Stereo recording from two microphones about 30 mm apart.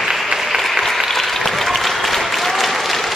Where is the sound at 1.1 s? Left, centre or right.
Centre.